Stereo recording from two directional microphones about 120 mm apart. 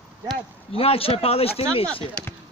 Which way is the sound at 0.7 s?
55° left (ahead or behind).